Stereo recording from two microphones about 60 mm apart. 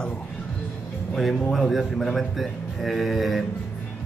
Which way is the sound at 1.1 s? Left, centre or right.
Centre.